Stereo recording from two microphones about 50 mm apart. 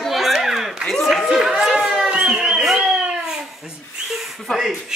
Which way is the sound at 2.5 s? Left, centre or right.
Centre.